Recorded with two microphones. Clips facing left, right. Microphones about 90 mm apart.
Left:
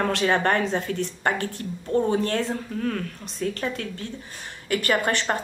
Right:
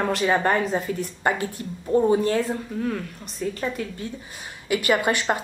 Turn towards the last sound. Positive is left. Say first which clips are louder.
# right 1 dB
turn(degrees=-10)  # may be behind; listen again after turning